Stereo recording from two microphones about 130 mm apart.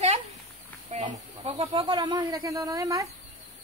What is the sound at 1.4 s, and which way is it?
Speech, 50° right (ahead or behind).